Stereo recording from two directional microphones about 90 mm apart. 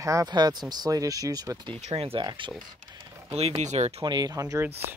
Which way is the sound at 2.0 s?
90° right.